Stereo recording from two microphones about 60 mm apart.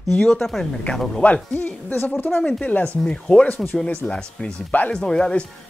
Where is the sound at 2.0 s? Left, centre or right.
Left.